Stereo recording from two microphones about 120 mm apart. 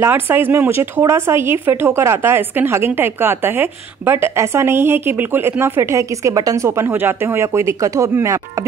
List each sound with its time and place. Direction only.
0.0 s speech: 20° right (ahead or behind)